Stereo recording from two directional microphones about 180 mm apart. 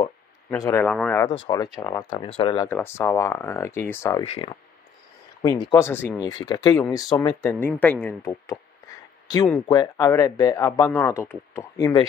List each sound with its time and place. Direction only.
0.8 s speech: 5° left (ahead or behind)
1.3 s speech: 20° left (ahead or behind)
2.2 s speech: 30° left (ahead or behind)
2.7 s speech: 15° left (ahead or behind)
4.2 s speech: 30° left (ahead or behind)